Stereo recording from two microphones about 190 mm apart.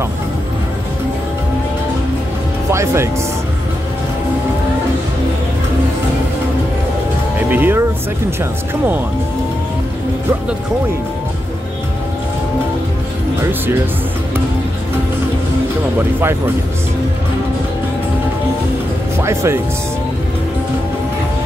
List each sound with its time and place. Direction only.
2.7 s speech: 15° right (ahead or behind)
7.3 s speech: 10° right (ahead or behind)
13.4 s speech: 10° right (ahead or behind)
19.1 s speech: 15° right (ahead or behind)